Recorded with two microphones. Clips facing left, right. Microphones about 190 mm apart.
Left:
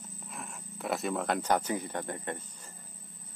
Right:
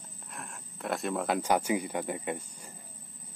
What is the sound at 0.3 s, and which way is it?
Speech, centre (ahead or behind).